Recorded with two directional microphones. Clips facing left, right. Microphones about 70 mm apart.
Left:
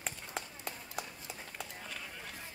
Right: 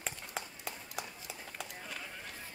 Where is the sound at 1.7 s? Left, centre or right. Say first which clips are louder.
Right 1 dB; centre.